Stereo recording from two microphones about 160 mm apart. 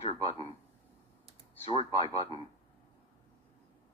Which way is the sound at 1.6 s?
40° left (ahead or behind).